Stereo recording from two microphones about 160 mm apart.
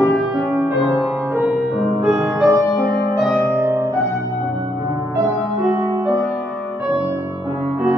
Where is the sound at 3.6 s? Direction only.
15° right (ahead or behind).